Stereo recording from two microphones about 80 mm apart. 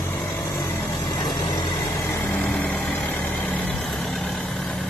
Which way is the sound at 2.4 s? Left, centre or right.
Centre.